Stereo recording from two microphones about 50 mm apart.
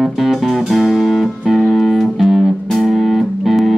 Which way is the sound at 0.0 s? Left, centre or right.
Centre.